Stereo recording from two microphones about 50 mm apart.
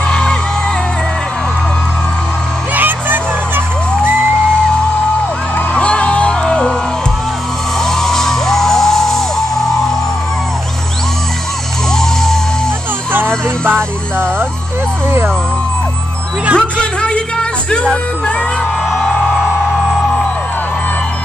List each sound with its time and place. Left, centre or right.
0.1 s music: centre
2.7 s music: right
5.8 s music: left
7.8 s music: centre
13.7 s music: right
16.5 s music: left